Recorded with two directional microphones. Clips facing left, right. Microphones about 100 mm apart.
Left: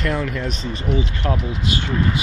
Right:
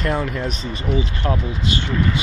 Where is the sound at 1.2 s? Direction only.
Centre (ahead or behind).